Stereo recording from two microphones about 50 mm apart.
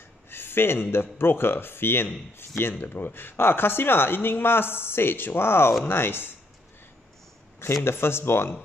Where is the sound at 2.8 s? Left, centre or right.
Left.